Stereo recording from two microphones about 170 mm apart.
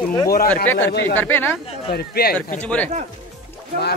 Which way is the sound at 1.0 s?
10° left (ahead or behind).